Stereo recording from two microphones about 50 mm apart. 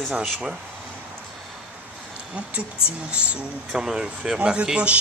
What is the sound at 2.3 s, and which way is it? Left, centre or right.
Speech, right.